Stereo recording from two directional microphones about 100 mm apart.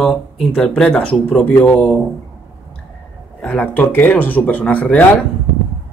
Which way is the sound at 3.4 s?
15° left (ahead or behind).